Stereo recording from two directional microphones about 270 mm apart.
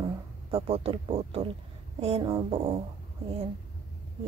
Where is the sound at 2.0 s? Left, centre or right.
Right.